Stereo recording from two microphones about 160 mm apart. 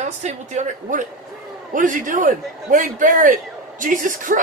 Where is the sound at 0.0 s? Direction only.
45° right (ahead or behind).